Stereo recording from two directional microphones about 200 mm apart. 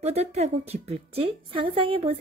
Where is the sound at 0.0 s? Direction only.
35° right (ahead or behind).